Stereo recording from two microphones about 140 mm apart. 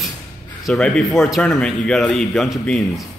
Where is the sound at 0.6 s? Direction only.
Centre (ahead or behind).